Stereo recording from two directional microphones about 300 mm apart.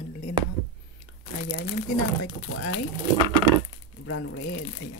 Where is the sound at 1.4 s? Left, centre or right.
Left.